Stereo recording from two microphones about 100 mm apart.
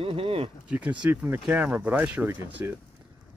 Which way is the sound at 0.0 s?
65° right (ahead or behind).